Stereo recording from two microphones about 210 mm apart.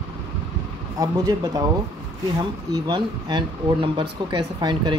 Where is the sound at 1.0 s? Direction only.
20° right (ahead or behind).